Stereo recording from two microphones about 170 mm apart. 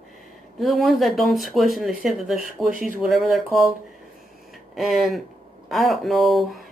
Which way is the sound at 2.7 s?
50° right (ahead or behind).